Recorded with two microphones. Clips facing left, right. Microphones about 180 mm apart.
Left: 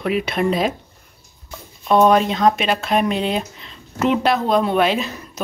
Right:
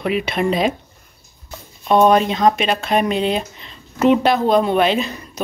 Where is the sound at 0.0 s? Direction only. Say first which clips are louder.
Even; centre (ahead or behind).